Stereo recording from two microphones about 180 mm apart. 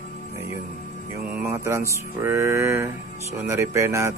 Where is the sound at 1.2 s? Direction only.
10° right (ahead or behind).